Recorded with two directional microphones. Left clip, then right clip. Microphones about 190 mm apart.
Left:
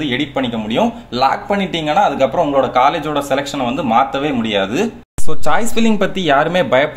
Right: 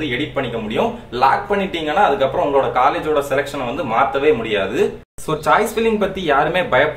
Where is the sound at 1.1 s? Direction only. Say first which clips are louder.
Right 1 dB; 45° left (ahead or behind).